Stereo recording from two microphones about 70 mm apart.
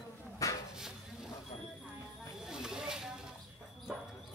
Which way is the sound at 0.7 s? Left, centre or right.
Centre.